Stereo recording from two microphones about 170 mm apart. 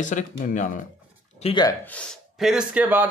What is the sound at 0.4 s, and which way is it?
Speech, 55° left (ahead or behind).